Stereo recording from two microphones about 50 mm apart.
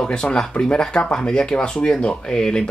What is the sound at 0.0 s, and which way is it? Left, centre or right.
Speech, centre.